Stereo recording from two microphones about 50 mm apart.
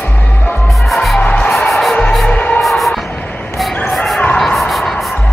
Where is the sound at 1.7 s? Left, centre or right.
Centre.